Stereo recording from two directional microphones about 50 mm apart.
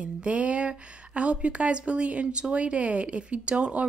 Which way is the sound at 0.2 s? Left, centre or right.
Right.